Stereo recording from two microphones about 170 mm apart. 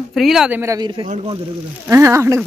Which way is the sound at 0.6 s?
20° right (ahead or behind).